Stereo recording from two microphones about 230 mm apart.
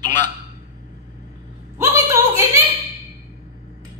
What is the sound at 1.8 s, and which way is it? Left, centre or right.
Speech, centre.